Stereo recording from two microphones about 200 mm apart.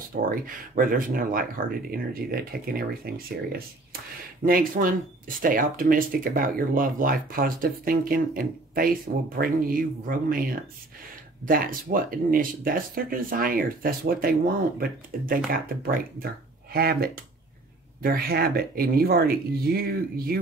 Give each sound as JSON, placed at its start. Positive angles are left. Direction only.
{"t": 0.2, "sound": "speech", "side_deg": -45}
{"t": 11.4, "sound": "speech", "side_deg": -45}